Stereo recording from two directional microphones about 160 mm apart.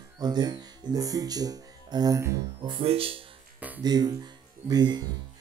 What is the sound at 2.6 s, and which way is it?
Speech, 35° right (ahead or behind).